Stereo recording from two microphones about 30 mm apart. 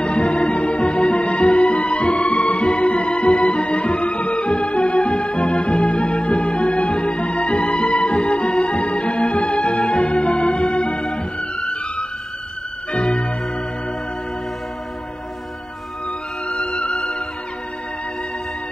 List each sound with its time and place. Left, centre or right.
0.3 s organ: left
0.9 s music: left
1.2 s music: left
2.0 s music: left
2.8 s music: left
4.0 s music: left
4.9 s organ: left
5.9 s music: left
8.7 s music: left
10.6 s music: left
11.5 s music: left
12.9 s organ: left
16.4 s music: left